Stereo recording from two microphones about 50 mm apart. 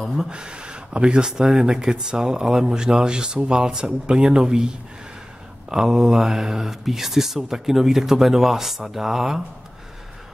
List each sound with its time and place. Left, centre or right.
0.3 s speech: centre